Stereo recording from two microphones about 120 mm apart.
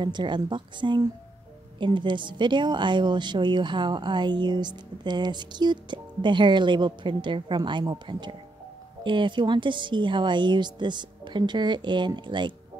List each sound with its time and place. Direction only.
0.0 s a woman's voice: 40° right (ahead or behind)